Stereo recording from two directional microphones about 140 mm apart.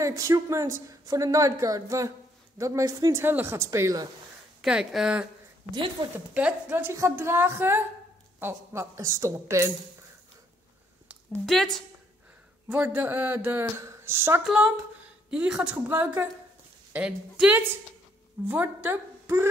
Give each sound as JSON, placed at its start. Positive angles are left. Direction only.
{"t": 0.0, "sound": "a woman's voice", "side_deg": -20}
{"t": 4.6, "sound": "a woman's voice", "side_deg": -5}
{"t": 6.0, "sound": "a woman's voice", "side_deg": -30}
{"t": 6.3, "sound": "a woman's voice", "side_deg": -15}
{"t": 11.1, "sound": "a sound", "side_deg": 0}
{"t": 12.6, "sound": "speech", "side_deg": -15}
{"t": 14.4, "sound": "a woman's voice", "side_deg": -5}